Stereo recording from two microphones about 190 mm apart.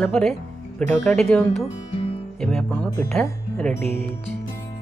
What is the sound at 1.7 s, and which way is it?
Music, 30° left (ahead or behind).